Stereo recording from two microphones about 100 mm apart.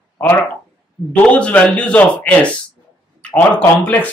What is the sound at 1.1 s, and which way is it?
Speech, 15° left (ahead or behind).